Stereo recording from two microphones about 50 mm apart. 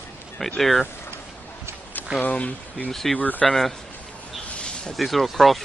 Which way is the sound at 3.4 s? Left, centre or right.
Centre.